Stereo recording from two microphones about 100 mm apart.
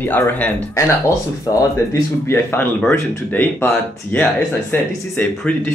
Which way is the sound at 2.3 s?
25° left (ahead or behind).